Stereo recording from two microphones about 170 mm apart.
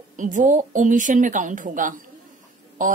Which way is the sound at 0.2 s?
50° right (ahead or behind).